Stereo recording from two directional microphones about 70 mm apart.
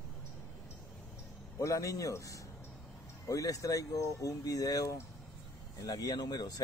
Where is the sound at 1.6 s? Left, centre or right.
Left.